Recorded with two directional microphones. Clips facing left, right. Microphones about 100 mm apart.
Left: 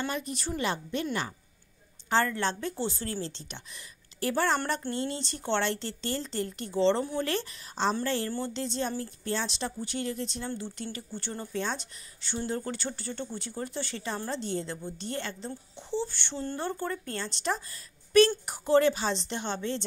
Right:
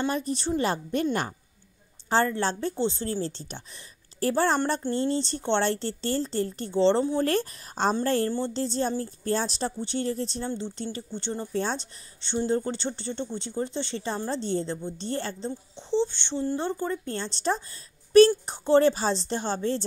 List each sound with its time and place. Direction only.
0.1 s a woman's voice: 35° right (ahead or behind)
2.0 s a woman's voice: 30° right (ahead or behind)
3.2 s a woman's voice: 40° right (ahead or behind)
7.2 s a woman's voice: 45° right (ahead or behind); by 11.4 s 25° right (ahead or behind)
11.5 s a woman's voice: 35° right (ahead or behind)
15.9 s a woman's voice: 20° right (ahead or behind); by 19.8 s 40° right (ahead or behind)